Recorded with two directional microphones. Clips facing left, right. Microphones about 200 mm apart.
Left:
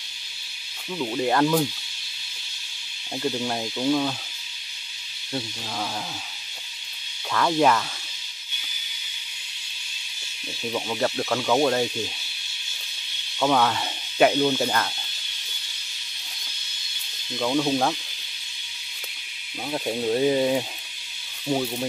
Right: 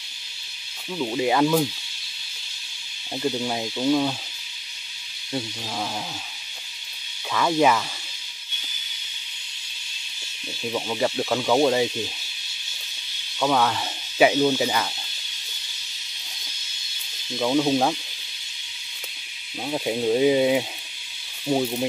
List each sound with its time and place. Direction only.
0.9 s speech: 5° right (ahead or behind)
3.2 s speech: 5° right (ahead or behind)
7.3 s speech: 5° right (ahead or behind)
10.7 s speech: 5° right (ahead or behind)
13.4 s speech: centre (ahead or behind)
17.4 s speech: 15° right (ahead or behind)
19.6 s speech: 10° right (ahead or behind)